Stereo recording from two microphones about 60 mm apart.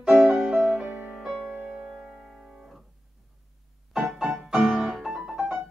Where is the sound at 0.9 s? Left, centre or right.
Right.